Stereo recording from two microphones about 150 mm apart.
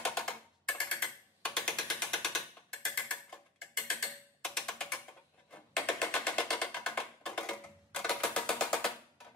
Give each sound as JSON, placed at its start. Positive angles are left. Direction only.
{"t": 0.0, "sound": "a sound", "side_deg": 5}
{"t": 2.9, "sound": "mechanisms", "side_deg": 5}
{"t": 5.5, "sound": "music", "side_deg": 5}